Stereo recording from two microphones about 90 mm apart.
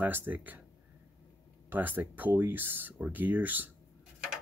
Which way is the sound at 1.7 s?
20° right (ahead or behind).